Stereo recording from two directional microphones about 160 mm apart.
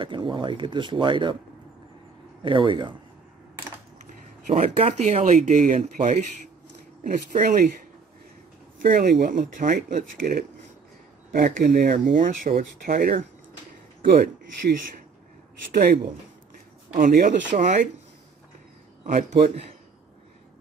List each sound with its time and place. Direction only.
0.0 s speech: 30° right (ahead or behind)
2.4 s speech: 30° right (ahead or behind)
4.5 s speech: 45° right (ahead or behind)
8.8 s speech: 65° right (ahead or behind)
14.0 s speech: 70° right (ahead or behind)
15.7 s speech: 70° right (ahead or behind); by 17.8 s 55° right (ahead or behind)
19.1 s speech: 40° right (ahead or behind)